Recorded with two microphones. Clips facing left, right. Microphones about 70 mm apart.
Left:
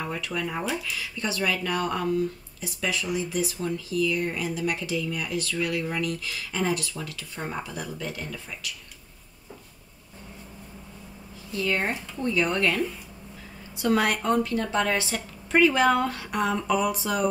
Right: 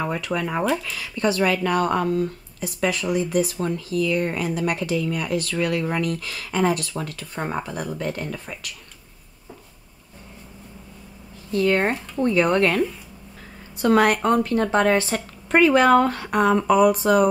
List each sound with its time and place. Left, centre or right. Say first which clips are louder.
0.0 s speech: right 5 dB; right
11.5 s speech: right 7 dB; right